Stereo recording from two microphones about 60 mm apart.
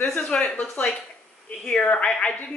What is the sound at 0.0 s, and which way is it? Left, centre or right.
Speech, left.